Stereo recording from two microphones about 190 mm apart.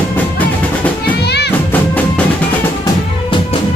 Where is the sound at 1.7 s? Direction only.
10° left (ahead or behind).